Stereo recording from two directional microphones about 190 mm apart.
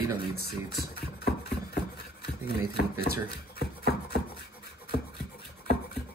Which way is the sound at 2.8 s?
60° left (ahead or behind).